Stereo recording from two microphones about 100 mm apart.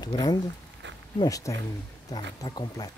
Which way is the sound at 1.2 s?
35° left (ahead or behind).